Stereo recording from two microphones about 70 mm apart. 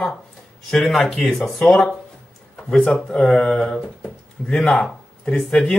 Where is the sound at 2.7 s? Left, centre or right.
Centre.